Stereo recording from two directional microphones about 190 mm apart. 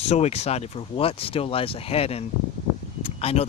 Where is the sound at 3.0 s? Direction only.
30° left (ahead or behind).